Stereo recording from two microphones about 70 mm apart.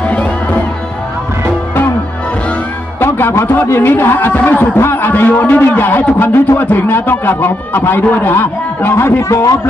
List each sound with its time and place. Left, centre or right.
0.0 s music: left
3.0 s music: left
3.6 s a man's voice: left
9.3 s a man's voice: left